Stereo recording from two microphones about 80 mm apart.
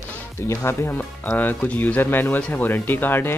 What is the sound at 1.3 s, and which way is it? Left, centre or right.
Speech, centre.